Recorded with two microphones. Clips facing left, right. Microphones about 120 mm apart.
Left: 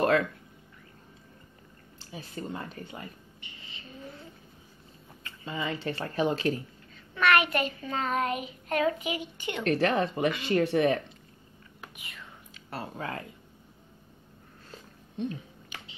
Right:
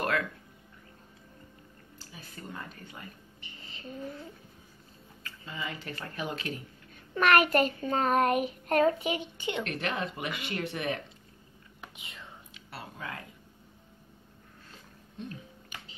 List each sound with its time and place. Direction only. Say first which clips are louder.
0.0 s a sound: left 6 dB; 25° left (ahead or behind)
2.0 s speech: left 9 dB; 25° left (ahead or behind)
3.3 s a sound: even; 40° right (ahead or behind)
5.2 s speech: left 5 dB; 25° left (ahead or behind)
7.2 s child singing: right 1 dB; 45° right (ahead or behind)
9.6 s speech: left 10 dB; 35° left (ahead or behind)
12.5 s speech: left 7 dB; 40° left (ahead or behind)